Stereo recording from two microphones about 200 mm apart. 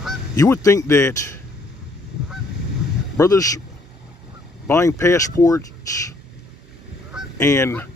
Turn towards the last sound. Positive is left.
turn(degrees=10)  # may be behind; listen again after turning